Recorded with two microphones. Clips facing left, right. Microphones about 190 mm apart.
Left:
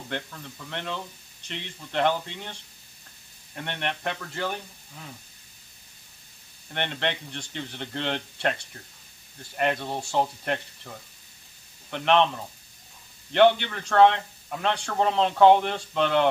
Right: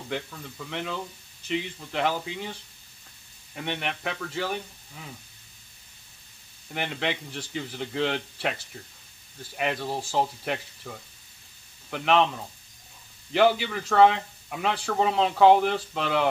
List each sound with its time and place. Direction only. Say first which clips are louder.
0.1 s a man's voice: right 1 dB; 5° right (ahead or behind)
6.7 s a man's voice: even; 5° right (ahead or behind)
11.9 s a man's voice: left 1 dB; 5° right (ahead or behind)
13.3 s a man's voice: left 2 dB; 5° right (ahead or behind)